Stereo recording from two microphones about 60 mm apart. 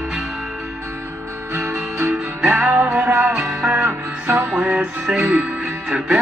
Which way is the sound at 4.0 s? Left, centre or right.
Right.